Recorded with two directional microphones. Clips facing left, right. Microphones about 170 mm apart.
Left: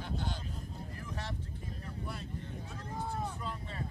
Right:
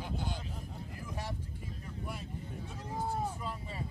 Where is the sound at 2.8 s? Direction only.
10° right (ahead or behind).